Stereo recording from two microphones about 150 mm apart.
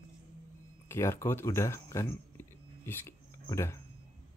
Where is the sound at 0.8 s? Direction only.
15° left (ahead or behind).